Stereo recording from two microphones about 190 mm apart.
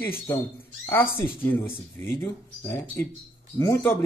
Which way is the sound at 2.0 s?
15° left (ahead or behind).